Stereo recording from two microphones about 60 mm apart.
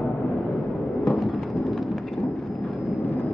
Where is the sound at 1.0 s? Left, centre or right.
Centre.